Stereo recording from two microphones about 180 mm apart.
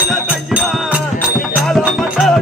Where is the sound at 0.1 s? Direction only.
5° right (ahead or behind).